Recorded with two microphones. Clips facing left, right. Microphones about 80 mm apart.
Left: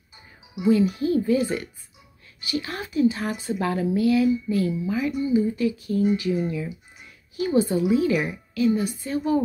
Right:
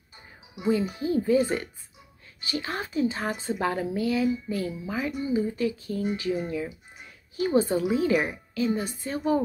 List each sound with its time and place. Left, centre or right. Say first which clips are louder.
0.6 s a woman's voice: left 6 dB; right